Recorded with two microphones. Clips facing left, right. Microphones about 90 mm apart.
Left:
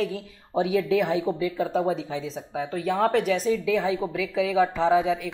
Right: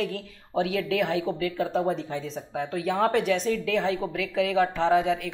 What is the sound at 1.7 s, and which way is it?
Speech, centre (ahead or behind).